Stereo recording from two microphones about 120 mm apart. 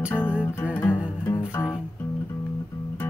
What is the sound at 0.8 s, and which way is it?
Music, 10° right (ahead or behind).